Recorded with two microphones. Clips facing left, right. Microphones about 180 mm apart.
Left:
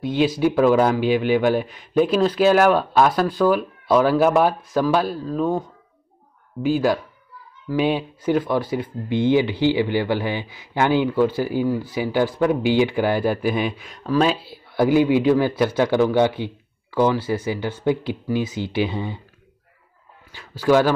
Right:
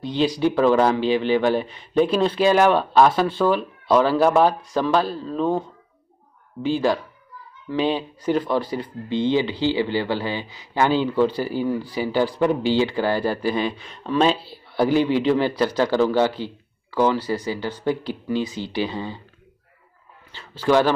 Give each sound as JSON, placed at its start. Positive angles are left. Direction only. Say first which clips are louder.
{"t": 0.0, "sound": "speech", "louder": "left 2 dB", "side_deg": 5}
{"t": 20.3, "sound": "speech", "louder": "left 1 dB", "side_deg": 10}